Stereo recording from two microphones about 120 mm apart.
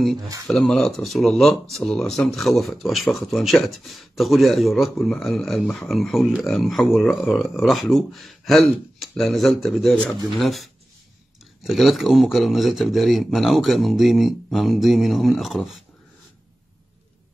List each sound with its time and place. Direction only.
0.5 s speech: 5° left (ahead or behind)